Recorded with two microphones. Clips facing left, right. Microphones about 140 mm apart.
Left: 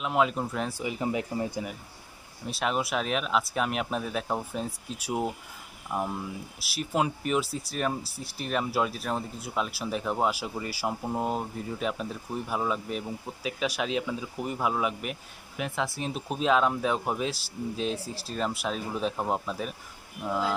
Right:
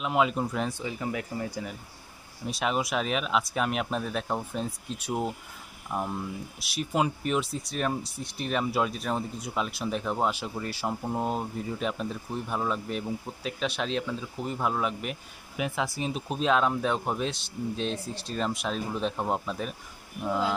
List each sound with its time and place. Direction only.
0.0 s speech: centre (ahead or behind)
0.9 s speech: 20° left (ahead or behind)
2.4 s speech: centre (ahead or behind)